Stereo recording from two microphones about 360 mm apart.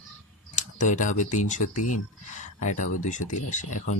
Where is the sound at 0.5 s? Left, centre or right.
Left.